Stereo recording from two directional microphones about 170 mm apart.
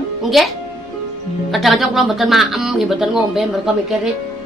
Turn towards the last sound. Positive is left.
turn(degrees=0)  # may be behind; listen again after turning